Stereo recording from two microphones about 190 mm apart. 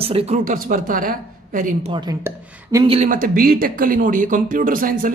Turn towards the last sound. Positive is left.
turn(degrees=-45)  # may be behind; listen again after turning